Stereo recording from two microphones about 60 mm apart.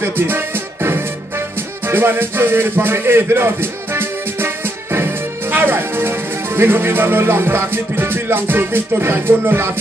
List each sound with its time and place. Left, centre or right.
1.9 s speech: right